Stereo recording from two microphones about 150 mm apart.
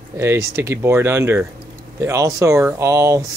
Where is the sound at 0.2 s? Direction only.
20° right (ahead or behind).